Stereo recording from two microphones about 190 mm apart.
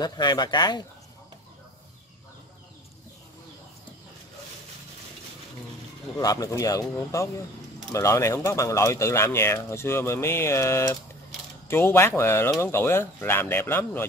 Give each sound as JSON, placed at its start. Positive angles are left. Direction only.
{"t": 0.0, "sound": "speech", "side_deg": 20}
{"t": 6.1, "sound": "speech", "side_deg": 20}